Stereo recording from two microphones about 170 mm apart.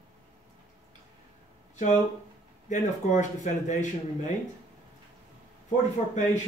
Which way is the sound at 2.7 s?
45° left (ahead or behind).